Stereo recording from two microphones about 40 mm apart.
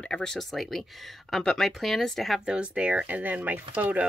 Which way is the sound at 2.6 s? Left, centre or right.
Right.